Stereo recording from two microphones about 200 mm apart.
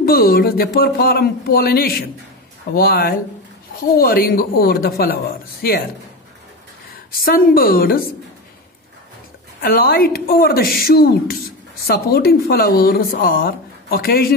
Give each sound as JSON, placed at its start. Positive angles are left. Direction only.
{"t": 0.0, "sound": "speech", "side_deg": 50}
{"t": 7.2, "sound": "speech", "side_deg": 45}
{"t": 9.6, "sound": "speech", "side_deg": 50}